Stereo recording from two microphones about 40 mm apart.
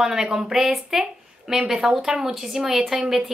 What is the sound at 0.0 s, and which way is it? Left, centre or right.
Speech, centre.